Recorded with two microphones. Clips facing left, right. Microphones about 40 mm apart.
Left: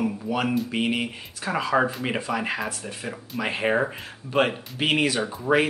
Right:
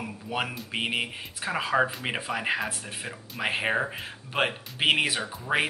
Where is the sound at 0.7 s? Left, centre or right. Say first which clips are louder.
Left 4 dB; centre.